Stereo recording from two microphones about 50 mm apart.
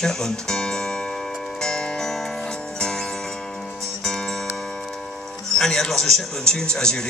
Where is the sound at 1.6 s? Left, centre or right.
Centre.